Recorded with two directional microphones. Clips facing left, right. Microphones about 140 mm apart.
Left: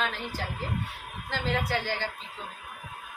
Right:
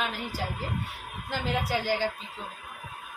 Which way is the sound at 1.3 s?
10° right (ahead or behind).